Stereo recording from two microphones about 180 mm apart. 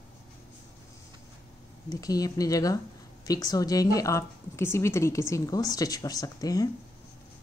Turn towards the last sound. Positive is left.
turn(degrees=20)  # may be behind; listen again after turning